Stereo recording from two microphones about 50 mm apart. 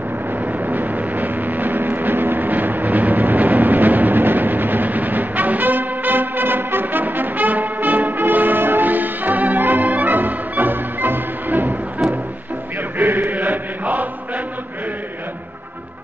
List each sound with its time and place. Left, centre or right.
0.4 s vehicle: right
12.9 s chant: right